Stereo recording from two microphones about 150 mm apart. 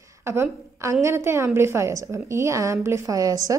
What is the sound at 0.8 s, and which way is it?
A woman's voice, 20° right (ahead or behind).